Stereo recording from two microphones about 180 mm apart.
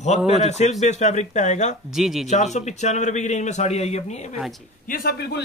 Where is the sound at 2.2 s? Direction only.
40° left (ahead or behind).